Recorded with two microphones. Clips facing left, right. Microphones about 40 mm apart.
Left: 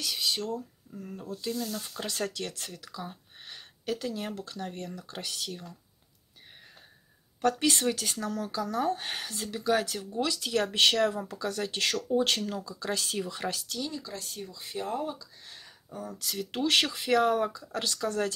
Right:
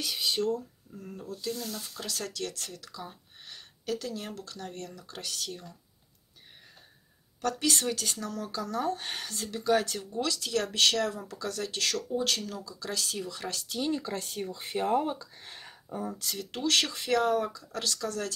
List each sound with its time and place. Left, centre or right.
0.0 s speech: centre
2.0 s speech: left
7.4 s speech: centre
13.7 s speech: right
16.2 s speech: centre
16.6 s speech: centre
16.9 s speech: centre